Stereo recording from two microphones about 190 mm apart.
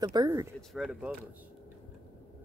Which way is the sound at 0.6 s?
Centre (ahead or behind).